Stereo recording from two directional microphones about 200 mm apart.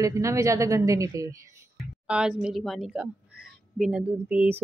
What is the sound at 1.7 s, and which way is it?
Speech, 5° right (ahead or behind).